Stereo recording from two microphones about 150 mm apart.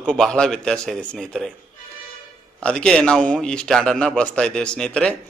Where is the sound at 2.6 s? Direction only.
5° left (ahead or behind).